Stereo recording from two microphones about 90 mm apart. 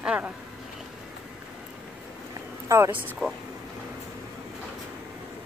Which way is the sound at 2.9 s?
20° right (ahead or behind).